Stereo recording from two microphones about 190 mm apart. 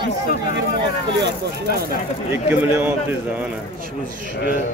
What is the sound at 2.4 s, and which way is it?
Speech, 10° right (ahead or behind).